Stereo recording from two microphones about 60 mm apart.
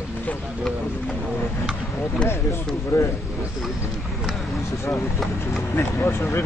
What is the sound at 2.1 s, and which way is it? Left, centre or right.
Speech, centre.